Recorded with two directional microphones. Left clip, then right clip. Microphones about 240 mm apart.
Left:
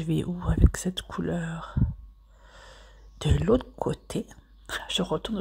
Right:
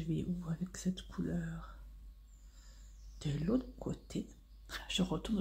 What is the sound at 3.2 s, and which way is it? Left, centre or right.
Speech, left.